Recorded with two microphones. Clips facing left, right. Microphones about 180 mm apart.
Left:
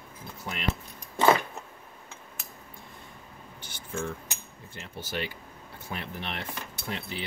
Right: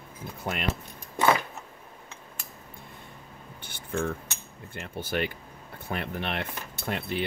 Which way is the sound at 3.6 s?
55° right (ahead or behind).